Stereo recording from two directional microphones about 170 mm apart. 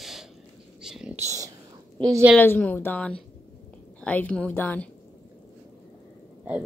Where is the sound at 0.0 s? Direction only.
Centre (ahead or behind).